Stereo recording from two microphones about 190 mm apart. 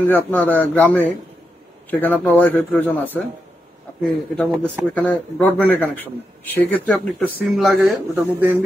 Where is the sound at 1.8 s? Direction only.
10° left (ahead or behind).